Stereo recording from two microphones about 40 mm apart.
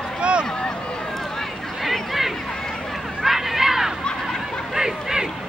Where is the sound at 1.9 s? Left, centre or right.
Centre.